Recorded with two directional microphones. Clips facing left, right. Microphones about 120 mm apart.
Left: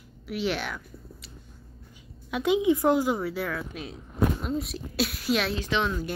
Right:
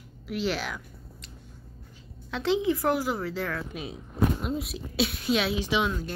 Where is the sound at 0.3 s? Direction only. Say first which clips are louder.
Even; centre (ahead or behind).